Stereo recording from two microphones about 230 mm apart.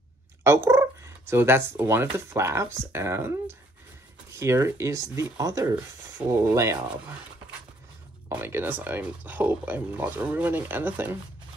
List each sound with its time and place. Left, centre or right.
0.4 s dog: centre
1.8 s speech: centre
8.3 s speech: centre